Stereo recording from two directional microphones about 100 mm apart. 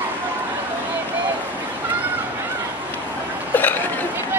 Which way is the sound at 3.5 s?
20° left (ahead or behind).